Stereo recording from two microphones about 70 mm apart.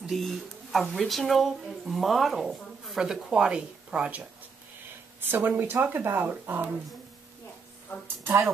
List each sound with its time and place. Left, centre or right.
0.1 s speech: centre
5.2 s speech: right
8.2 s speech: right